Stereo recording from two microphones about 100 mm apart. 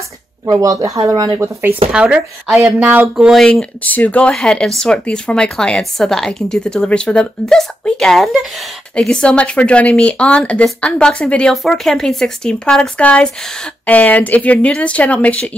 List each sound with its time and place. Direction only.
0.5 s speech: 35° right (ahead or behind)
1.4 s speech: 20° right (ahead or behind)
1.9 s speech: 10° right (ahead or behind)
2.9 s speech: 15° right (ahead or behind)
3.3 s speech: centre (ahead or behind)
3.8 s speech: 15° left (ahead or behind)